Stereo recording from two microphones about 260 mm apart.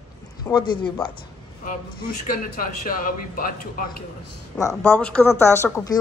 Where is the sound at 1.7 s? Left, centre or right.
Left.